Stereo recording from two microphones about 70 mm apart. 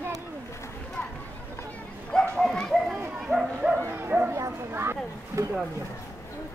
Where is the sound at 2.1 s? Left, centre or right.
Centre.